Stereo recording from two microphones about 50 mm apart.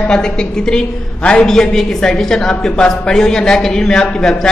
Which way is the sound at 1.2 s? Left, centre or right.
Centre.